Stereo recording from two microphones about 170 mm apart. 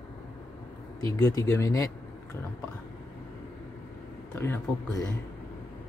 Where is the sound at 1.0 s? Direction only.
20° left (ahead or behind).